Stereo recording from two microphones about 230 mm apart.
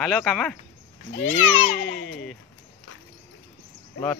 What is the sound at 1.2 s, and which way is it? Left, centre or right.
Speech, centre.